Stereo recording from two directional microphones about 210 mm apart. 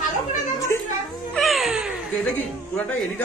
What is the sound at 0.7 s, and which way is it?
Speech, 10° left (ahead or behind).